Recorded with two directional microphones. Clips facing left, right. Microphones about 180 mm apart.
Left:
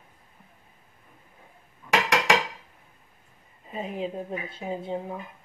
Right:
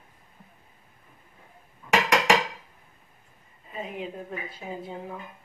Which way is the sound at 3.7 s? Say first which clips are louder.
Left 3 dB; 30° left (ahead or behind).